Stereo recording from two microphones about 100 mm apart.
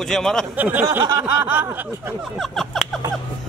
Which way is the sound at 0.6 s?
20° right (ahead or behind).